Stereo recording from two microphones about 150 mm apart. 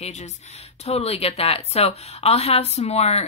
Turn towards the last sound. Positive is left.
turn(degrees=45)  # may be behind; listen again after turning